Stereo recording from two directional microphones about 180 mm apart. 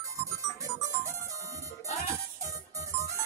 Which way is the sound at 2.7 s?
20° right (ahead or behind).